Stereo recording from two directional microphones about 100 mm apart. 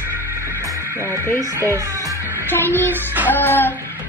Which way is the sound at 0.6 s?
30° right (ahead or behind).